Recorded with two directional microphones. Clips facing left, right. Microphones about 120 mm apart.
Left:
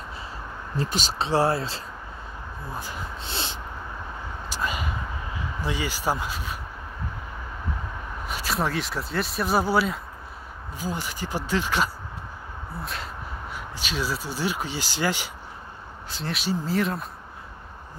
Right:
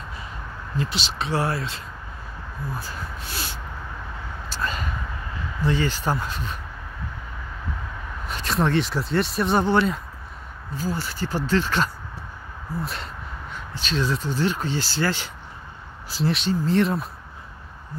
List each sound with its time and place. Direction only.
0.7 s speech: 45° left (ahead or behind)
1.1 s speech: 30° left (ahead or behind)
2.7 s speech: 20° left (ahead or behind)
4.5 s speech: 15° left (ahead or behind)
8.3 s speech: 5° left (ahead or behind)
10.8 s speech: 15° left (ahead or behind)
12.8 s speech: centre (ahead or behind)
13.5 s speech: 10° left (ahead or behind)
16.1 s speech: centre (ahead or behind)